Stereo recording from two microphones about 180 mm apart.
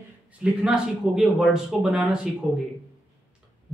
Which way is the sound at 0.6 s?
5° right (ahead or behind).